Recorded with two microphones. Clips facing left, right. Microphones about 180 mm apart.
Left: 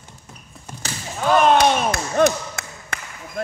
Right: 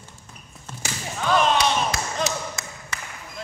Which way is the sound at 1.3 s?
55° left (ahead or behind).